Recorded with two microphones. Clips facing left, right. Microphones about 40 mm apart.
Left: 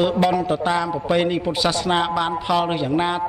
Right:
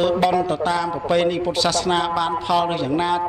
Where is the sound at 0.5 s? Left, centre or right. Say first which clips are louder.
Even; centre.